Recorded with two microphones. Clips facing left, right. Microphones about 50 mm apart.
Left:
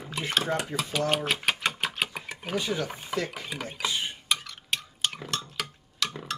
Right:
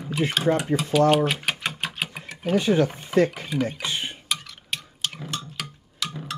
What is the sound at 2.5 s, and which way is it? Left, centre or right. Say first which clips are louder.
Speech: right 9 dB; right.